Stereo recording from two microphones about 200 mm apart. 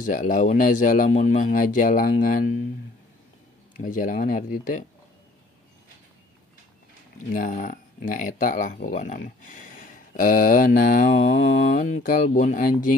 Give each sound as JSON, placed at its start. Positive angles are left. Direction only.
{"t": 0.0, "sound": "speech", "side_deg": 40}
{"t": 3.7, "sound": "speech", "side_deg": 40}
{"t": 7.3, "sound": "speech", "side_deg": 45}
{"t": 11.3, "sound": "mantra", "side_deg": 65}
{"t": 11.7, "sound": "speech", "side_deg": 40}